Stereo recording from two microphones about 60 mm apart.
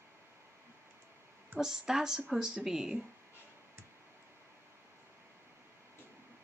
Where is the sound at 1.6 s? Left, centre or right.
Centre.